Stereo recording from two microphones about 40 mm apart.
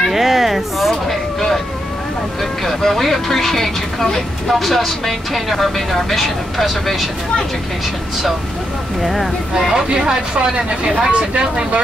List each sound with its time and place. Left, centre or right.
0.0 s a sound: centre
2.6 s speech: centre
9.0 s speech: centre
9.5 s speech: centre